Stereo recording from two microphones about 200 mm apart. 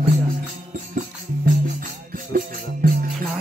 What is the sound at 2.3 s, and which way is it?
Music, 45° right (ahead or behind).